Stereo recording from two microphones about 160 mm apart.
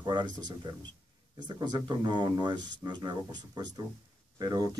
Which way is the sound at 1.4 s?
25° right (ahead or behind).